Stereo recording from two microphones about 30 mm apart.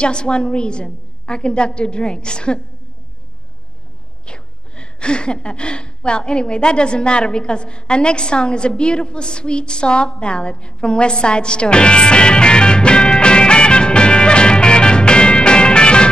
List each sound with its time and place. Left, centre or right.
0.0 s a woman's voice: left
4.3 s a woman's voice: left